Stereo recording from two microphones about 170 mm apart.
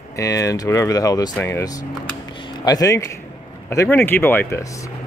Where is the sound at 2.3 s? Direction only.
25° left (ahead or behind).